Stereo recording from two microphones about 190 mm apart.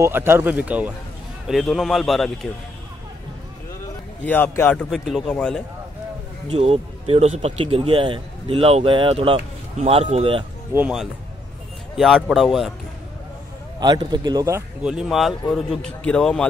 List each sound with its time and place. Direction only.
0.0 s a man's voice: 10° right (ahead or behind)
4.2 s a man's voice: 10° left (ahead or behind)
6.5 s speech: 30° right (ahead or behind)
10.7 s a man's voice: 5° right (ahead or behind)
13.7 s speech: 25° right (ahead or behind)
14.8 s a man's voice: 5° right (ahead or behind)